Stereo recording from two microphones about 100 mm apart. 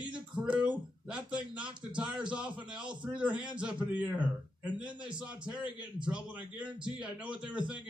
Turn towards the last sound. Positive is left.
turn(degrees=-10)  # may be behind; listen again after turning